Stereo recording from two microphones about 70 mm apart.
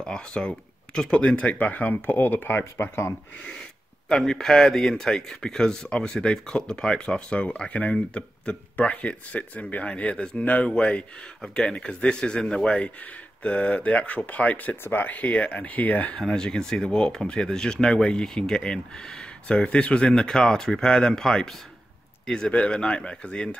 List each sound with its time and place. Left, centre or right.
0.0 s speech: centre; by 2.6 s left
2.6 s speech: left
4.1 s speech: centre; by 16.2 s left
16.2 s speech: centre